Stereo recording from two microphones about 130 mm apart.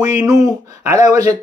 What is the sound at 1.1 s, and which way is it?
Speech, 25° right (ahead or behind).